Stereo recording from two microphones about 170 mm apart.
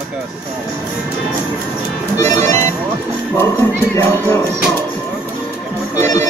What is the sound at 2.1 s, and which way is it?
Music, 15° left (ahead or behind).